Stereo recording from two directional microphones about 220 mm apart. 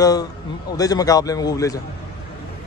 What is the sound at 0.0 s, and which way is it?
Speech, 15° left (ahead or behind).